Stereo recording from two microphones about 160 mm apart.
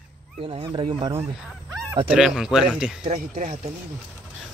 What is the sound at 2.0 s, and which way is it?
Speech, 5° right (ahead or behind).